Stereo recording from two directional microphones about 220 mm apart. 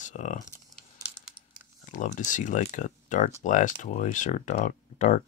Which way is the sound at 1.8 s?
35° left (ahead or behind).